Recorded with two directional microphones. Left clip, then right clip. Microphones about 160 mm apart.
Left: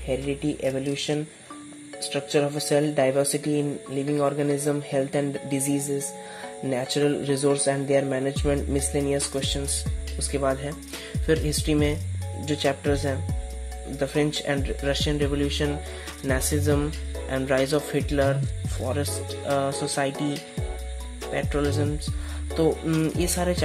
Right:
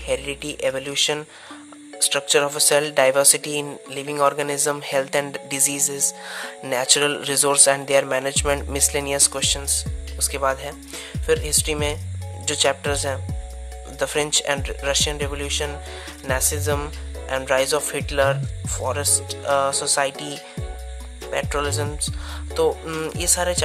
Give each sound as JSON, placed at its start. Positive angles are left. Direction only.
{"t": 0.1, "sound": "speech", "side_deg": -45}
{"t": 10.5, "sound": "speech", "side_deg": -25}
{"t": 21.3, "sound": "speech", "side_deg": -40}